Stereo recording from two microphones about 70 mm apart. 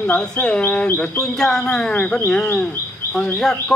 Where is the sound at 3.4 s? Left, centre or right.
Centre.